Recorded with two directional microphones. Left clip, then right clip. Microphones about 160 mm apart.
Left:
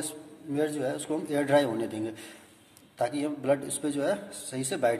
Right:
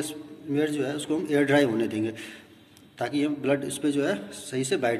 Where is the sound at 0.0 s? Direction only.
40° left (ahead or behind).